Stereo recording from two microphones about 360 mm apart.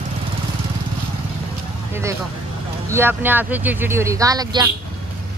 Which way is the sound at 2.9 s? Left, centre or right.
Centre.